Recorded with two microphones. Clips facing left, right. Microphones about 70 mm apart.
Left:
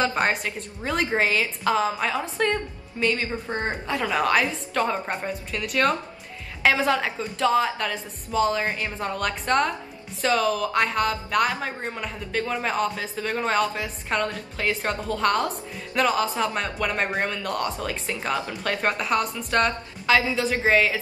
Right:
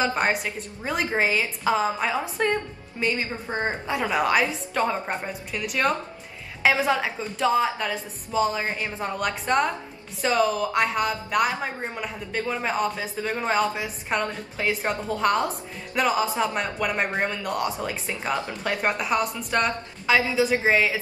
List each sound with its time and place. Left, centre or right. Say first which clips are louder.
0.0 s a woman's voice: even; centre